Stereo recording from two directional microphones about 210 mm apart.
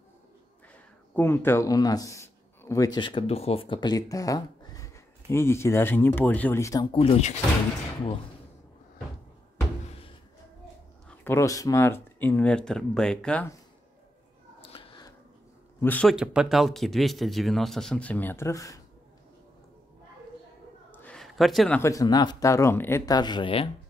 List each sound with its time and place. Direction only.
1.1 s speech: 10° left (ahead or behind); by 7.3 s 30° left (ahead or behind)
11.1 s speech: 10° left (ahead or behind)
14.6 s a sound: 25° left (ahead or behind)
15.8 s speech: 5° left (ahead or behind)
20.9 s speech: 5° left (ahead or behind); by 23.7 s 25° left (ahead or behind)